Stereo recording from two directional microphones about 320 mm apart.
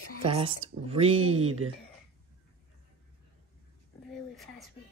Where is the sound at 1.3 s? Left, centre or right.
Right.